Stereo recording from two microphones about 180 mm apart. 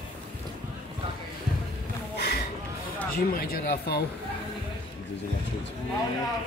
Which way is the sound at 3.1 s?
55° left (ahead or behind).